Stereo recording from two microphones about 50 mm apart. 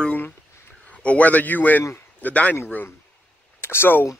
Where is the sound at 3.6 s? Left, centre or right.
Left.